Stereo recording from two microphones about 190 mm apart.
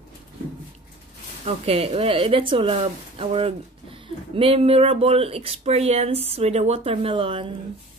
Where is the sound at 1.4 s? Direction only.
30° right (ahead or behind).